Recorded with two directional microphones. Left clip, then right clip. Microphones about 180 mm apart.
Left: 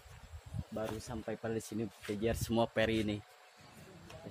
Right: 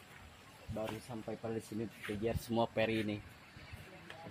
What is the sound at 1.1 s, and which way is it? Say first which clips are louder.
Speech: left 3 dB; 15° left (ahead or behind).